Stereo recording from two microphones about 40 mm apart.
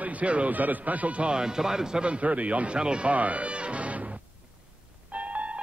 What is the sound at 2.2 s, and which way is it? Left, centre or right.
Speech, right.